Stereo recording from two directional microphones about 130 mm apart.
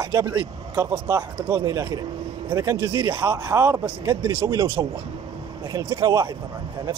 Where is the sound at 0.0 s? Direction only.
20° right (ahead or behind).